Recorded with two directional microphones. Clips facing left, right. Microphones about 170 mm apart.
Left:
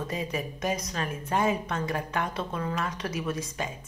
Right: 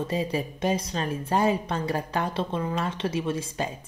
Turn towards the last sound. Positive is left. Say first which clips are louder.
# right 3 dB
turn(degrees=-30)  # may be behind; listen again after turning